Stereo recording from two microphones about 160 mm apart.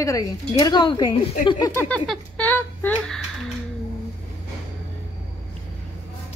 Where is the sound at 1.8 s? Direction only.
5° left (ahead or behind).